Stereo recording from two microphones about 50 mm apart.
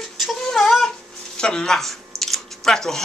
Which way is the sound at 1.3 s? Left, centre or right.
Centre.